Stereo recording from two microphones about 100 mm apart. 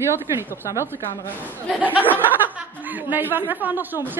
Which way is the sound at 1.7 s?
15° right (ahead or behind).